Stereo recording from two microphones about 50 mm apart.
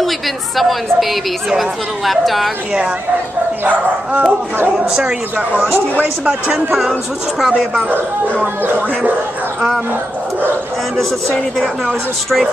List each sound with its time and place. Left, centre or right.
0.6 s speech: centre
3.6 s speech: right
4.8 s speech: centre
6.5 s speech: centre
8.6 s speech: right
11.0 s speech: centre